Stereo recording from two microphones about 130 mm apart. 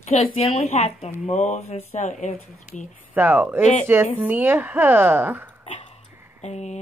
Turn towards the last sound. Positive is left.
turn(degrees=60)  # may be behind; listen again after turning